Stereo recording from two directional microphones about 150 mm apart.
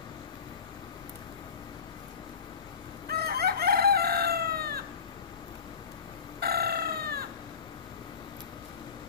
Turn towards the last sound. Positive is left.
turn(degrees=-90)